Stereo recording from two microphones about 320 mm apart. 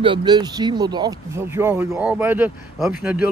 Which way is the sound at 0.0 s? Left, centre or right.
Centre.